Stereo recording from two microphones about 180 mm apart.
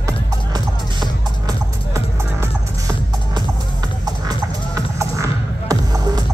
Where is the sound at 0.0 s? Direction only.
25° right (ahead or behind).